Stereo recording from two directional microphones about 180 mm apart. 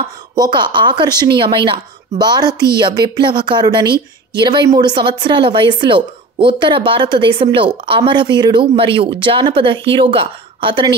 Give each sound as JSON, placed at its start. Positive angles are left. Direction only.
{"t": 0.4, "sound": "speech", "side_deg": -25}